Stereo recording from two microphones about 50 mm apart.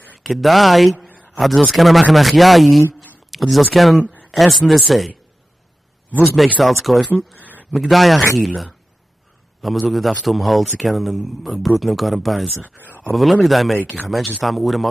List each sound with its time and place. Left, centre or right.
0.2 s a man's voice: centre
6.2 s a man's voice: centre
7.3 s a sound: right
7.7 s a man's voice: centre
12.7 s speech: left
13.1 s a man's voice: centre